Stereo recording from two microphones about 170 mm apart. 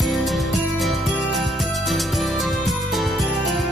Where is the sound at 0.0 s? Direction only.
Centre (ahead or behind).